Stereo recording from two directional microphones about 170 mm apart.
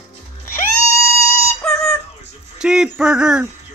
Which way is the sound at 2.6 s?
5° right (ahead or behind).